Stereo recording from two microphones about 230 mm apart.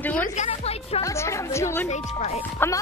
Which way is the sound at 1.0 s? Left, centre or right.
Centre.